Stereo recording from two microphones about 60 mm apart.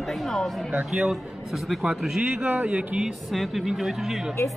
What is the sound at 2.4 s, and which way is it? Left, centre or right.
Speech, right.